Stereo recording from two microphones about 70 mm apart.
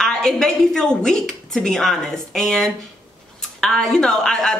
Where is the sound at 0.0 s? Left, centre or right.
Centre.